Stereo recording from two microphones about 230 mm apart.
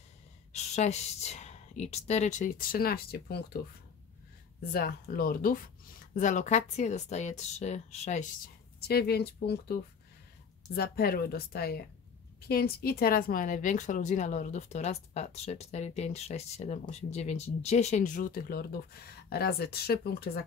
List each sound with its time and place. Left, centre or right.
0.5 s speech: left
4.7 s a woman's voice: left
8.8 s a woman's voice: left